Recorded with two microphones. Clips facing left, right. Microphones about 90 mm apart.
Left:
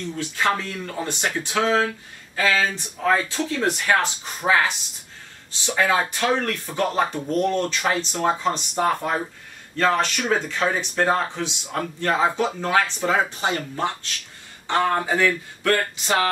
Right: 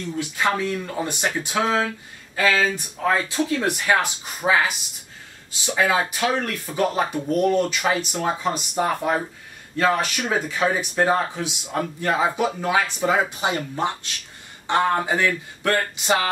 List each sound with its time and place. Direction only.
0.2 s speech: 15° right (ahead or behind)
5.8 s speech: 5° right (ahead or behind)